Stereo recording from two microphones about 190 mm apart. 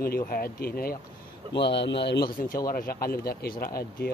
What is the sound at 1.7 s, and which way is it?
Speech, 70° left (ahead or behind).